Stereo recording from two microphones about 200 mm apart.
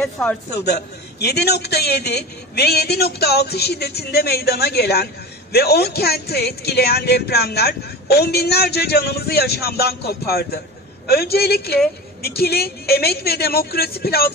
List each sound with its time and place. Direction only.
0.0 s a man's voice: 10° left (ahead or behind)
1.2 s a woman's voice: 55° left (ahead or behind)